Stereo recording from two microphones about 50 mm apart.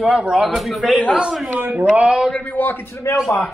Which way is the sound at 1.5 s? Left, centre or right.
Right.